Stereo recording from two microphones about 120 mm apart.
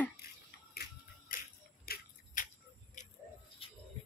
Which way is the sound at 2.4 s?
90° left.